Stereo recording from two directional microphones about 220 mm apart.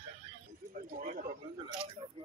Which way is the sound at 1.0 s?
35° right (ahead or behind).